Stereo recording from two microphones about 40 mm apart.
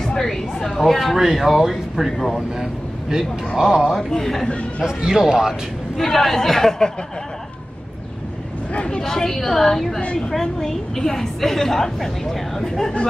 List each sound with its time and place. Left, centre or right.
0.0 s a woman's voice: centre
1.1 s speech: centre
2.1 s speech: centre
2.5 s a man's voice: centre
4.0 s a woman's voice: centre
4.5 s speech: left
4.8 s speech: centre
5.2 s a man's voice: centre
5.5 s a woman's voice: centre
8.7 s speech: left
9.0 s a woman's voice: centre